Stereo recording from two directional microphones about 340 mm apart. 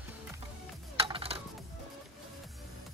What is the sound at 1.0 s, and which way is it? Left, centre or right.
Music, centre.